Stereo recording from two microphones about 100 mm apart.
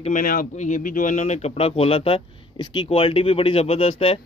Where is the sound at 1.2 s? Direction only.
90° left.